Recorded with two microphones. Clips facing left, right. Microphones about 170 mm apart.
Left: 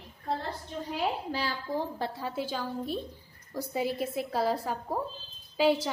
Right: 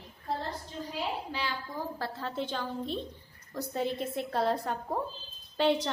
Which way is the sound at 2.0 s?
10° left (ahead or behind).